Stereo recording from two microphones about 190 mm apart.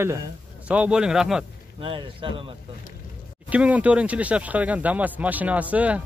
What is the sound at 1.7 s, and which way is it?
Speech, 25° right (ahead or behind).